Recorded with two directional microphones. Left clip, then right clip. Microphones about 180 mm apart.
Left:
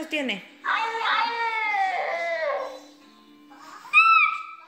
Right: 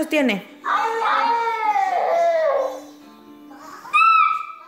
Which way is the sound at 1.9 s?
Centre (ahead or behind).